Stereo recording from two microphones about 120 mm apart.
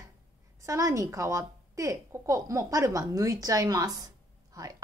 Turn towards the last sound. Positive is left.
turn(degrees=-30)  # may be behind; listen again after turning